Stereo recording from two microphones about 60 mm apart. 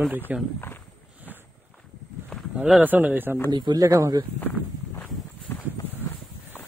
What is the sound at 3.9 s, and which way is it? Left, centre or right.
Speech, right.